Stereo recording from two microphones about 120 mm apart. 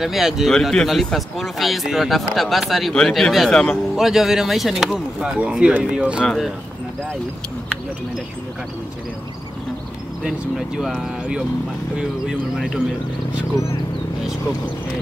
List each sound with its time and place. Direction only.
0.0 s speech: centre (ahead or behind)
10.8 s speech: 5° right (ahead or behind)